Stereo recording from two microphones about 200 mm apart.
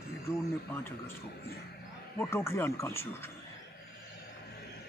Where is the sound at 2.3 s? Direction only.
10° left (ahead or behind).